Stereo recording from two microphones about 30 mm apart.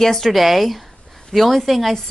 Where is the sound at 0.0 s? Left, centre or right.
Centre.